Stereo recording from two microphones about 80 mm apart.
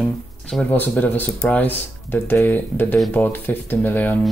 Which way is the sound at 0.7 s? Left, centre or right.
Left.